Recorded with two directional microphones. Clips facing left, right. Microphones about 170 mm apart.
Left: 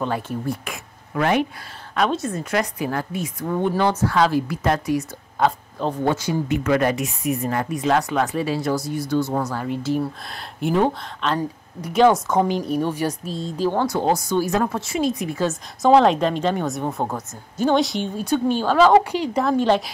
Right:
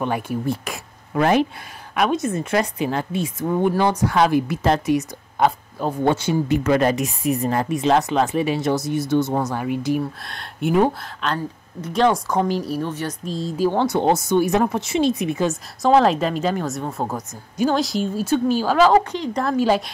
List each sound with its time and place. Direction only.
0.0 s a woman's voice: 15° right (ahead or behind)
0.7 s a sound: 35° right (ahead or behind)
2.0 s a woman's voice: 15° right (ahead or behind)
10.2 s a woman's voice: centre (ahead or behind)
11.3 s a woman's voice: 10° left (ahead or behind)
13.7 s speech: 20° right (ahead or behind)
15.8 s a woman's voice: centre (ahead or behind)
19.1 s a woman's voice: 10° left (ahead or behind)
19.4 s a woman's voice: 5° right (ahead or behind)